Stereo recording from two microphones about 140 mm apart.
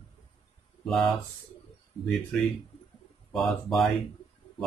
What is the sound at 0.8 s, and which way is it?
Speech, centre (ahead or behind).